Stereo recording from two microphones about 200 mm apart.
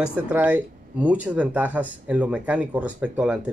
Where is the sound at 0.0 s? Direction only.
5° right (ahead or behind).